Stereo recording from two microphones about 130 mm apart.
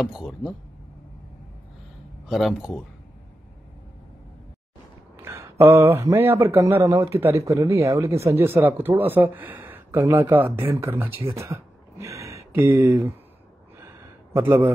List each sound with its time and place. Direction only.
0.0 s speech: centre (ahead or behind)
2.2 s speech: centre (ahead or behind)
5.1 s a man's voice: 20° right (ahead or behind)
11.3 s a sound: 20° right (ahead or behind)
14.3 s speech: 20° right (ahead or behind)